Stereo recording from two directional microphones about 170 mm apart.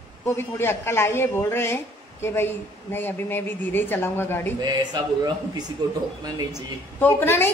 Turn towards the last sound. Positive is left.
turn(degrees=15)  # may be behind; listen again after turning